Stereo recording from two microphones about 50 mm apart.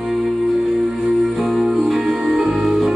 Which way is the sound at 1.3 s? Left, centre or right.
Centre.